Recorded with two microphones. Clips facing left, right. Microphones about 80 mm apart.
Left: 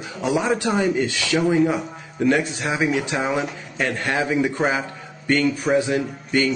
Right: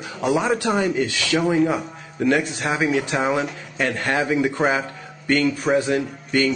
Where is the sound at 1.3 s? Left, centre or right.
Centre.